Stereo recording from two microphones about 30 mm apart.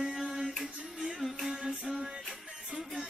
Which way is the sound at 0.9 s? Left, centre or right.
Centre.